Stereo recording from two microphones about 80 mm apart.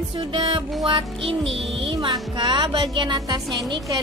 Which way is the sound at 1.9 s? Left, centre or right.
Right.